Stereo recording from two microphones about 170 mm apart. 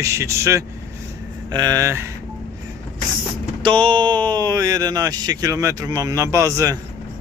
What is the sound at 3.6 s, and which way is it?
Speech, 30° right (ahead or behind).